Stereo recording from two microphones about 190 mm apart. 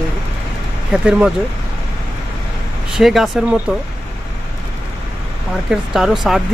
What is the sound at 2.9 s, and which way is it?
Speech, centre (ahead or behind).